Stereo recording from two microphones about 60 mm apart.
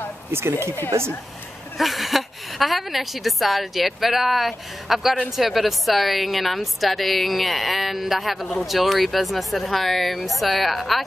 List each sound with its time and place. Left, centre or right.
0.3 s speech: right
1.8 s a woman's voice: centre